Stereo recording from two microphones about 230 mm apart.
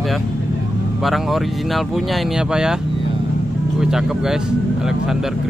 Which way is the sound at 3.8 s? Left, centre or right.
Centre.